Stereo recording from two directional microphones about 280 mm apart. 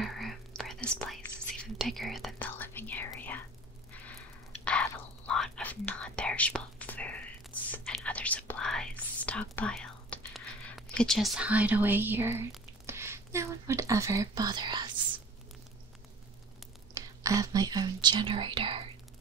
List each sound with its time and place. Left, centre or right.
0.0 s whispering: centre
4.6 s whispering: centre
16.9 s speech: centre